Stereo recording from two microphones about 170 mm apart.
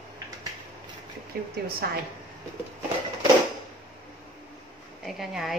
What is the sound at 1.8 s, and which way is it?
Speech, 65° right (ahead or behind).